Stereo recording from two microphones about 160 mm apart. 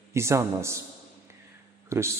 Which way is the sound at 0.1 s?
15° right (ahead or behind).